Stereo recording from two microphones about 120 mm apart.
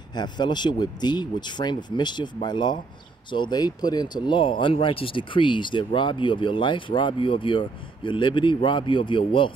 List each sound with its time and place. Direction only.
0.1 s speech: 40° left (ahead or behind)